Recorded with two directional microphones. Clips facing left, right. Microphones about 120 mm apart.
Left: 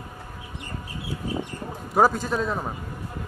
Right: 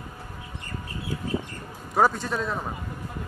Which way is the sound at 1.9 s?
5° left (ahead or behind).